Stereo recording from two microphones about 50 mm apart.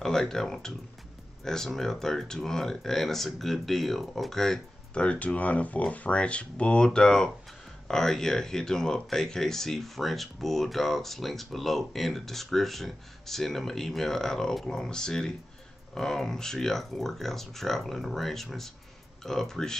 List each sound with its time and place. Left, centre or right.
0.0 s speech: centre
4.9 s speech: left